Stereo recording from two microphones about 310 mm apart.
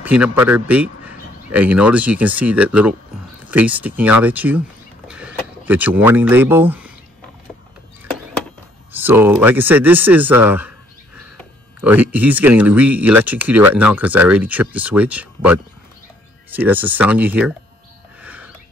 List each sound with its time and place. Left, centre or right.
0.0 s a man's voice: centre
8.9 s speech: centre
18.2 s bird: centre